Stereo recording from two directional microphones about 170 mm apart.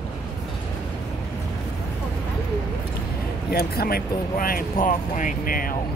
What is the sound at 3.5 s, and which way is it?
Speech, 65° left (ahead or behind).